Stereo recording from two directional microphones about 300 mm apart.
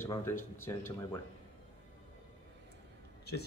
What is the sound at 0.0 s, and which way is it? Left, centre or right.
Speech, centre.